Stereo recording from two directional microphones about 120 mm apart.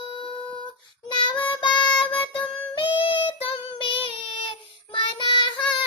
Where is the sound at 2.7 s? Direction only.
45° left (ahead or behind).